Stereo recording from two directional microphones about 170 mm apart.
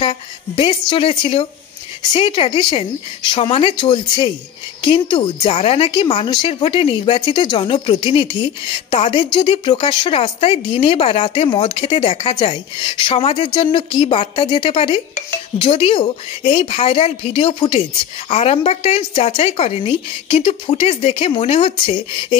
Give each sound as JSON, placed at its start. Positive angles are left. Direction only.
{"t": 0.0, "sound": "a woman's voice", "side_deg": 30}